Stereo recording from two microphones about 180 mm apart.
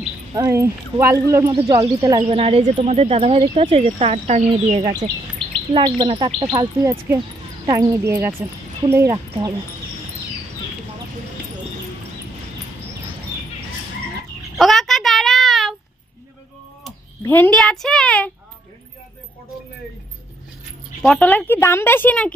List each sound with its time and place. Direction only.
0.3 s a woman's voice: 15° right (ahead or behind)
2.2 s speech: 35° right (ahead or behind)
4.7 s a woman's voice: 25° right (ahead or behind)
14.6 s a sound: centre (ahead or behind)
17.2 s a woman's voice: 10° left (ahead or behind)
21.0 s a woman's voice: 5° left (ahead or behind)